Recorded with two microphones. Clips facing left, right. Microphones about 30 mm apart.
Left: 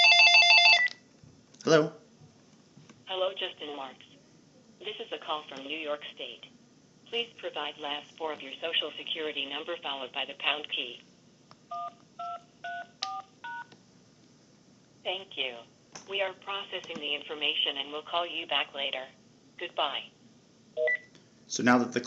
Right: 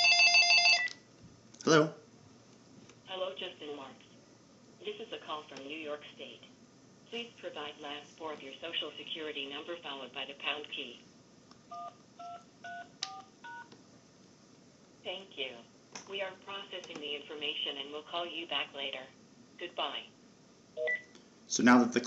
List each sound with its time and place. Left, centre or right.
0.0 s telephone bell ringing: left
1.6 s speech: centre
3.1 s speech: left
15.0 s speech: left
20.7 s telephone dialing: left
21.1 s a sound: centre